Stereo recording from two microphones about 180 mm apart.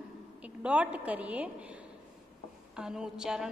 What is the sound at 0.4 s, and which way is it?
A woman's voice, 5° right (ahead or behind).